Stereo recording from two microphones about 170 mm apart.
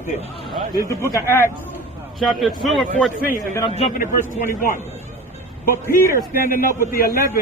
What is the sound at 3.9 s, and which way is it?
Speech, 55° left (ahead or behind).